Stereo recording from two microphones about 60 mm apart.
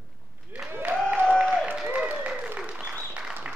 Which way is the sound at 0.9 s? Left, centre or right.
Right.